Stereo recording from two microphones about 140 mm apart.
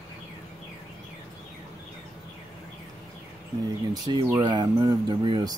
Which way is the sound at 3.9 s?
30° right (ahead or behind).